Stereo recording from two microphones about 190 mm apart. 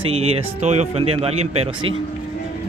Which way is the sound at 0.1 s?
35° right (ahead or behind).